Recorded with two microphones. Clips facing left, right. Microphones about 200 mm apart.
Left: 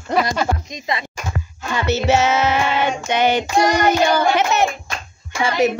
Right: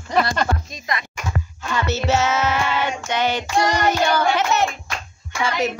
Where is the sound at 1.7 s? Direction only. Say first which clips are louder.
Left 3 dB; 10° left (ahead or behind).